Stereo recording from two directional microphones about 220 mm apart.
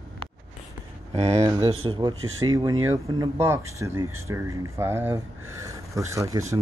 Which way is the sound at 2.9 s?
10° right (ahead or behind).